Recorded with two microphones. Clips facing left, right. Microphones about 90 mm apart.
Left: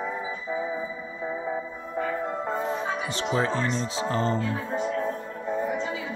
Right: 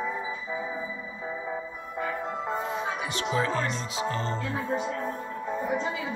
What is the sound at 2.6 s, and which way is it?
Speech, 30° left (ahead or behind).